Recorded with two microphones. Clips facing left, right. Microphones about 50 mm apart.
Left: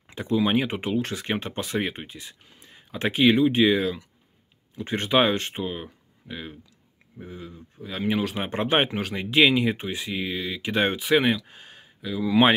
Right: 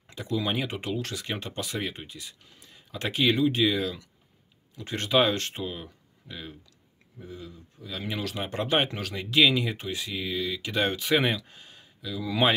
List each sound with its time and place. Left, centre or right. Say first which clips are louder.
0.0 s speech: left 6 dB; left
11.0 s speech: left 4 dB; centre
11.4 s speech: left 3 dB; left